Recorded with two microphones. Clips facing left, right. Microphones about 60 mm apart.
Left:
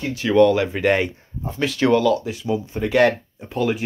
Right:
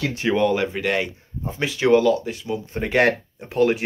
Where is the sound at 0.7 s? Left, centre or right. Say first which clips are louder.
Left 4 dB; centre.